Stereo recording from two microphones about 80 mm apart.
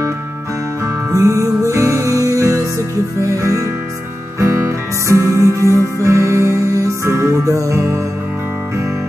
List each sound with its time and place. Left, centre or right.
1.1 s music: right